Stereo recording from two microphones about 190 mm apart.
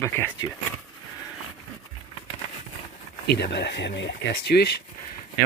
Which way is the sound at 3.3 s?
60° left (ahead or behind).